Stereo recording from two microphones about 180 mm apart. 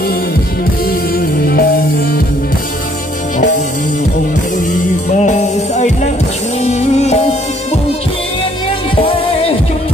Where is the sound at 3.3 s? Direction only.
45° left (ahead or behind).